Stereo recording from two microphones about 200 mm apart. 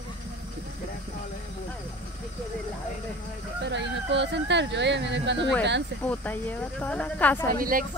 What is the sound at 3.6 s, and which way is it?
Speech, 60° right (ahead or behind).